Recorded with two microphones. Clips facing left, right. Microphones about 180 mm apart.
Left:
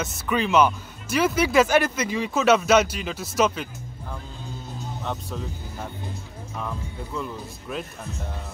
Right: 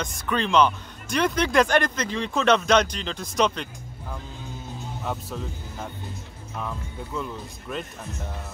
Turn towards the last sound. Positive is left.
turn(degrees=0)  # may be behind; listen again after turning